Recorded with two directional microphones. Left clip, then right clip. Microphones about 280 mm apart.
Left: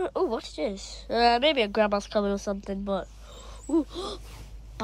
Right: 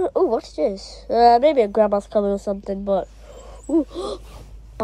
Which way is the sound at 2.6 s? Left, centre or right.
Centre.